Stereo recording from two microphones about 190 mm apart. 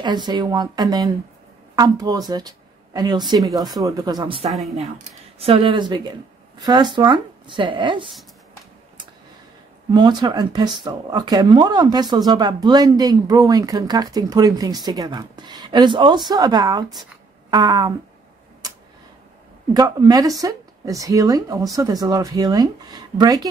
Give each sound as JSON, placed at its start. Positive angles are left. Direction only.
{"t": 0.0, "sound": "speech", "side_deg": -25}
{"t": 4.5, "sound": "speech", "side_deg": 0}
{"t": 4.7, "sound": "speech", "side_deg": -30}
{"t": 9.9, "sound": "speech", "side_deg": -25}
{"t": 19.7, "sound": "speech", "side_deg": -20}